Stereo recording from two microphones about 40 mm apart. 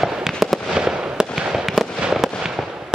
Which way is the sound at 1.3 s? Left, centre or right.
Centre.